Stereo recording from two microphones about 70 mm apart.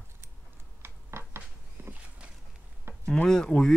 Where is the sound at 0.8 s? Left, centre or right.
Right.